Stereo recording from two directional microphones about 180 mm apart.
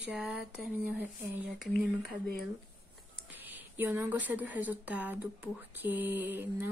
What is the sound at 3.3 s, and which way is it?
Speech, 10° right (ahead or behind).